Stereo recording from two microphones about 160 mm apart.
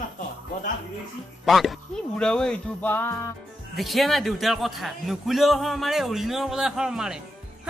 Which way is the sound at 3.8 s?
Centre (ahead or behind).